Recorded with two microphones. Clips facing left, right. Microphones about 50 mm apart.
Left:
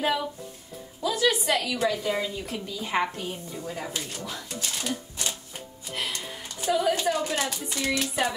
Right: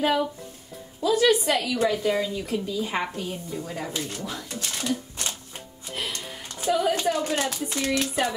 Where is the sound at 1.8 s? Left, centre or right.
Centre.